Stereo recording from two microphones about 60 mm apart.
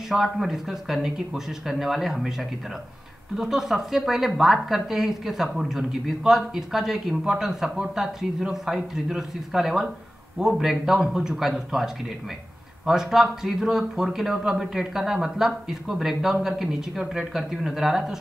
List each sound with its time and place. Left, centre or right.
0.1 s speech: centre
3.3 s speech: centre